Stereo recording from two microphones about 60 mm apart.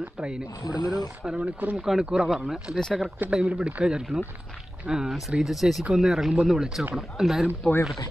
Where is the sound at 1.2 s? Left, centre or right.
Centre.